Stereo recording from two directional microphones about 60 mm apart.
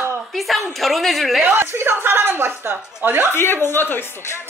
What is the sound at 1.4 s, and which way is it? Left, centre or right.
A woman's voice, right.